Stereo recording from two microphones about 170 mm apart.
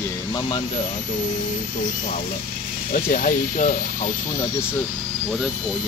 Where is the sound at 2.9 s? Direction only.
50° left (ahead or behind).